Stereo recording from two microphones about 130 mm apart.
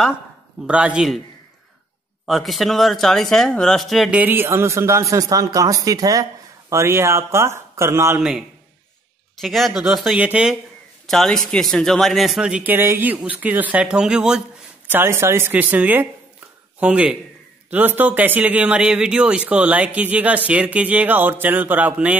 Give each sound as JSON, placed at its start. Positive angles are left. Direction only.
{"t": 0.7, "sound": "speech", "side_deg": -10}
{"t": 2.2, "sound": "speech", "side_deg": 0}
{"t": 4.1, "sound": "a man's voice", "side_deg": -15}
{"t": 8.2, "sound": "speech", "side_deg": -5}
{"t": 11.1, "sound": "speech", "side_deg": 5}
{"t": 14.9, "sound": "speech", "side_deg": -20}